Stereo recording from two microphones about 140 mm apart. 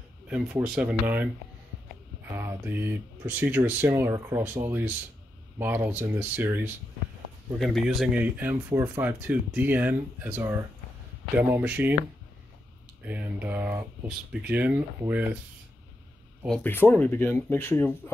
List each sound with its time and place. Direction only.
0.3 s speech: 10° right (ahead or behind)
2.3 s speech: 15° right (ahead or behind)
7.5 s speech: centre (ahead or behind)
8.2 s speech: 15° right (ahead or behind)
13.0 s speech: 10° right (ahead or behind)
16.4 s speech: 10° left (ahead or behind)